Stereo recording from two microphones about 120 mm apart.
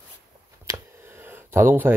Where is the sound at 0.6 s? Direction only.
20° right (ahead or behind).